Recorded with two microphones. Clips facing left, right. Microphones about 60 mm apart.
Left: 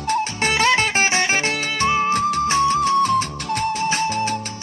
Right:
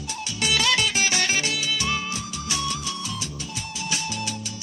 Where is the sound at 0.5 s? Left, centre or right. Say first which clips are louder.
Left 5 dB; left.